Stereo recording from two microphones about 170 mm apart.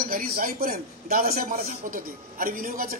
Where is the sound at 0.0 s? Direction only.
55° right (ahead or behind).